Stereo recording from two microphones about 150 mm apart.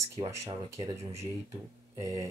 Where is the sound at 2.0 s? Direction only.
20° right (ahead or behind).